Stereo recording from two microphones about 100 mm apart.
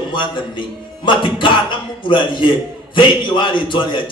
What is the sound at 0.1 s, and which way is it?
Speech, 55° left (ahead or behind).